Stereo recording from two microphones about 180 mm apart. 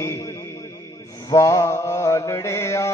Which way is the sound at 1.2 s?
15° left (ahead or behind).